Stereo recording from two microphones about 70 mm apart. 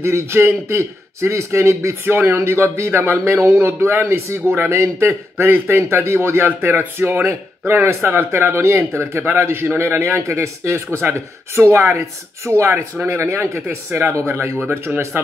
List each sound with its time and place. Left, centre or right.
0.0 s speech: right